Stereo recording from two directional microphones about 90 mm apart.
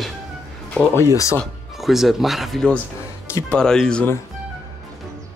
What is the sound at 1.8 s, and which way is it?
Speech, 5° right (ahead or behind).